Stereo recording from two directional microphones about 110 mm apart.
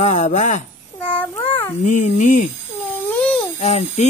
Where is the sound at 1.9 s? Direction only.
90° left.